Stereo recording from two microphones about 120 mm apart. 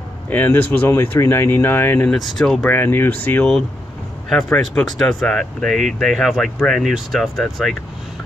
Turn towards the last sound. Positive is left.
turn(degrees=0)  # may be behind; listen again after turning